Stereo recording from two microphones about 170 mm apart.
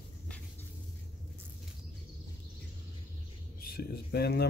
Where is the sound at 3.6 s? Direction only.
65° left (ahead or behind).